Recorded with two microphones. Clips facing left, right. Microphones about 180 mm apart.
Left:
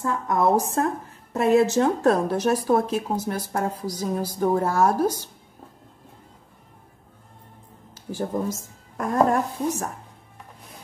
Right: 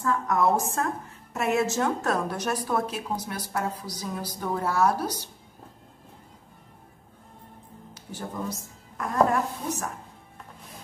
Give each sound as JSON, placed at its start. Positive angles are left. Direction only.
{"t": 0.0, "sound": "a woman's voice", "side_deg": 25}
{"t": 7.9, "sound": "a woman's voice", "side_deg": 45}